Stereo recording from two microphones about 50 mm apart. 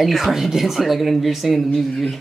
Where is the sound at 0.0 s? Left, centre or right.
Centre.